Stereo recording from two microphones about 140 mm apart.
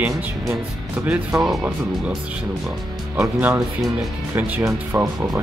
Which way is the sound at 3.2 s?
20° right (ahead or behind).